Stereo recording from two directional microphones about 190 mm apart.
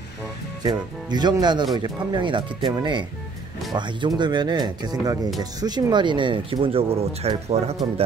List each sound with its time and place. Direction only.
0.7 s speech: 20° right (ahead or behind)